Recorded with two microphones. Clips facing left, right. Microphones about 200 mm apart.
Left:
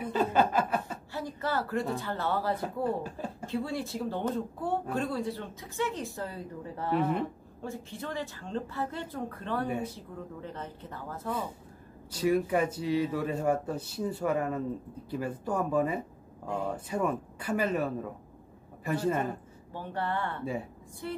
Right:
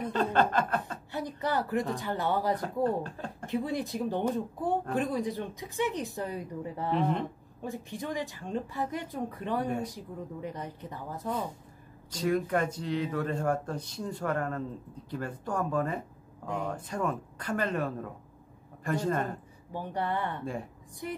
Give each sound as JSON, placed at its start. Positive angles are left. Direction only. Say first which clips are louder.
{"t": 0.0, "sound": "a sound", "louder": "even", "side_deg": 10}
{"t": 1.1, "sound": "speech", "louder": "right 1 dB", "side_deg": -15}
{"t": 2.6, "sound": "speech", "louder": "right 2 dB", "side_deg": 10}
{"t": 3.4, "sound": "speech", "louder": "right 2 dB", "side_deg": -15}
{"t": 6.9, "sound": "speech", "louder": "left 1 dB", "side_deg": 5}
{"t": 7.6, "sound": "speech", "louder": "right 2 dB", "side_deg": -15}
{"t": 12.1, "sound": "speech", "louder": "left 2 dB", "side_deg": 10}
{"t": 19.7, "sound": "speech", "louder": "right 1 dB", "side_deg": -15}